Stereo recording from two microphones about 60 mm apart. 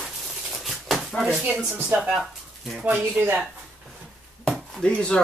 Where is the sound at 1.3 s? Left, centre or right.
Centre.